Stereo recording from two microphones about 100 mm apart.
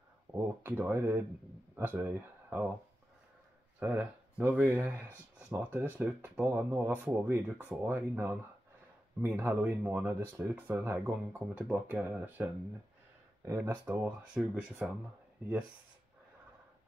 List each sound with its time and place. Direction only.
0.3 s speech: 25° right (ahead or behind)
3.8 s speech: 20° right (ahead or behind)
6.5 s speech: 25° right (ahead or behind)
7.1 s speech: 15° right (ahead or behind)
10.7 s speech: 25° right (ahead or behind)
11.3 s speech: 15° right (ahead or behind)
13.5 s speech: 25° right (ahead or behind)
13.8 s speech: 5° right (ahead or behind)